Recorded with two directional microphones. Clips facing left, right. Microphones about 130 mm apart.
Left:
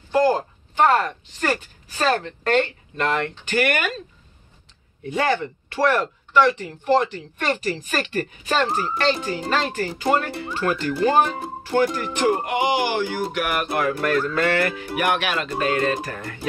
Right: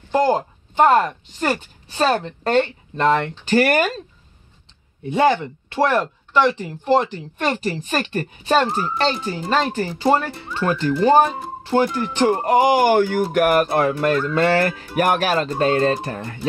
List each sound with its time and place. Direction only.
0.1 s speech: 25° right (ahead or behind)
5.1 s speech: 25° right (ahead or behind)